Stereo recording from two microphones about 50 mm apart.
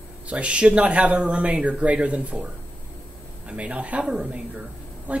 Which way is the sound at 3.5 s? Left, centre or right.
Right.